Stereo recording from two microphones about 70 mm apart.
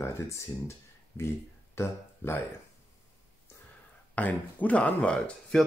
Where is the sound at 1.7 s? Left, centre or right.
Left.